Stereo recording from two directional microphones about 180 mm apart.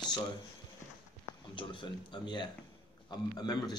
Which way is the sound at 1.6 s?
25° left (ahead or behind).